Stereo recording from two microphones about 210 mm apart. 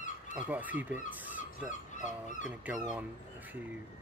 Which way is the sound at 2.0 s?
35° left (ahead or behind).